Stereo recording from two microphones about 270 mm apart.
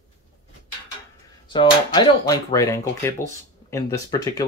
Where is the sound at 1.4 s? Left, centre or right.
Centre.